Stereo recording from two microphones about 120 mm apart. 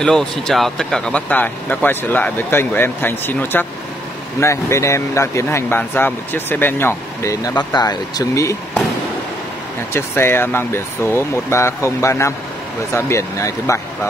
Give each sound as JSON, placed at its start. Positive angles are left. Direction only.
{"t": 0.0, "sound": "speech", "side_deg": 5}
{"t": 7.5, "sound": "speech", "side_deg": 35}
{"t": 9.9, "sound": "speech", "side_deg": 20}